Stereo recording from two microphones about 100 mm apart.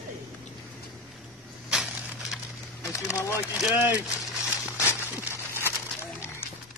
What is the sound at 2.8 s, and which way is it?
Speech, 30° left (ahead or behind).